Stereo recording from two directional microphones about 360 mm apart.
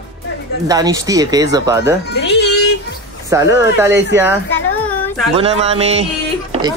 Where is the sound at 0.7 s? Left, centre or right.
Centre.